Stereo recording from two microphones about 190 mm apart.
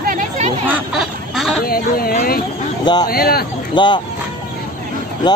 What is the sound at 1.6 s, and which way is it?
Speech, 50° left (ahead or behind).